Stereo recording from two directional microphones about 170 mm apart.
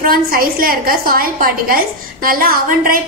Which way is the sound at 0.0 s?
60° right (ahead or behind).